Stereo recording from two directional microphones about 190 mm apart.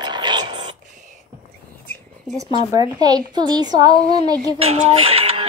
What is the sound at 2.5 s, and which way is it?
A woman's voice, 20° right (ahead or behind).